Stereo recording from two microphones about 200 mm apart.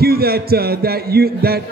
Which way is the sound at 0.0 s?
50° right (ahead or behind).